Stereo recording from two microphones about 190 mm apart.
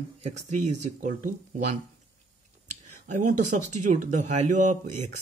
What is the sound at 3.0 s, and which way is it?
Speech, 40° right (ahead or behind).